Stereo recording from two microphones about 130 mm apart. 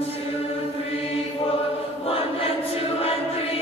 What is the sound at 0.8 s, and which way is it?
Choir, 50° left (ahead or behind).